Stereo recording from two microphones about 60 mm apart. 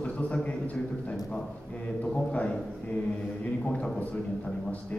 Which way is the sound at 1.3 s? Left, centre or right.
Left.